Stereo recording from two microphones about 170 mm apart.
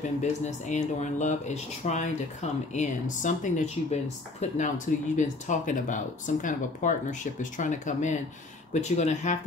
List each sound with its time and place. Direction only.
0.2 s speech: 45° left (ahead or behind)